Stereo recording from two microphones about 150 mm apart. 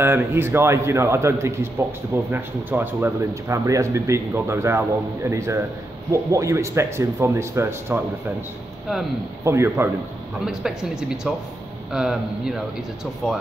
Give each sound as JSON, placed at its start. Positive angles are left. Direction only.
{"t": 0.0, "sound": "a man's voice", "side_deg": -15}
{"t": 9.4, "sound": "speech", "side_deg": -15}
{"t": 10.4, "sound": "speech", "side_deg": -5}